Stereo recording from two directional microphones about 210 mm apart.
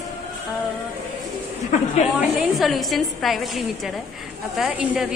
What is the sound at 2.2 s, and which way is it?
A woman's voice, centre (ahead or behind).